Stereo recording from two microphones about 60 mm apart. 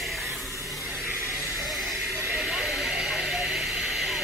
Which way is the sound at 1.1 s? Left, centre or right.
Right.